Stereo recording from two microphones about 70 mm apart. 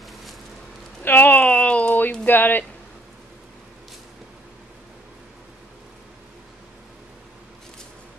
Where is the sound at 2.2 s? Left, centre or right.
Left.